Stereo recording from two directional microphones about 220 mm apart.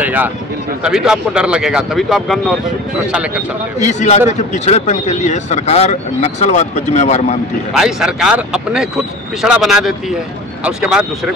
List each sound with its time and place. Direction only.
0.0 s a man's voice: 5° right (ahead or behind)
3.8 s speech: 30° left (ahead or behind)
7.7 s a man's voice: centre (ahead or behind)